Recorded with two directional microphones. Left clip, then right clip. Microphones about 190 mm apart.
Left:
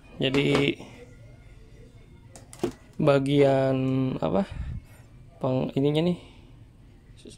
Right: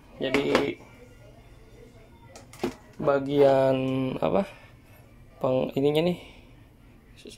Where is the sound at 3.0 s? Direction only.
35° left (ahead or behind).